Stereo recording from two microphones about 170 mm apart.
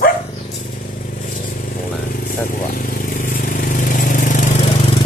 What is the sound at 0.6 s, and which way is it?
Vehicle, 55° left (ahead or behind).